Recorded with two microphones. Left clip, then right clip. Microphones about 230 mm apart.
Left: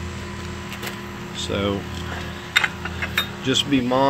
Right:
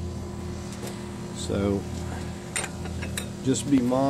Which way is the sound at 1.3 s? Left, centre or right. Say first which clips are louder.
Left 4 dB; centre.